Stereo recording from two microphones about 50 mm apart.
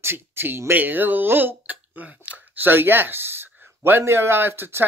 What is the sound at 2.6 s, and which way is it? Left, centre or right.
Speech, right.